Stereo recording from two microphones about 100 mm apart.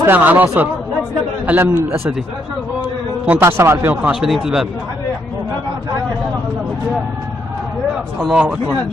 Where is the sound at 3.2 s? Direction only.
25° right (ahead or behind).